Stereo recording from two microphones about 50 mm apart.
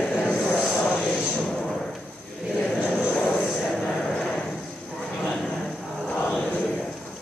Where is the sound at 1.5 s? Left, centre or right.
Centre.